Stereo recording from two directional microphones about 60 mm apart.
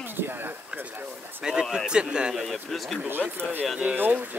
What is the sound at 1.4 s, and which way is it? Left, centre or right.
Speech, centre.